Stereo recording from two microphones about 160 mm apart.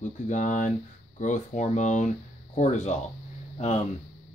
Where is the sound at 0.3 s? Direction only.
55° left (ahead or behind).